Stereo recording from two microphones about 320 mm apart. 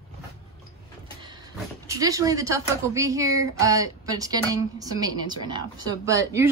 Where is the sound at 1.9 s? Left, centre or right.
Centre.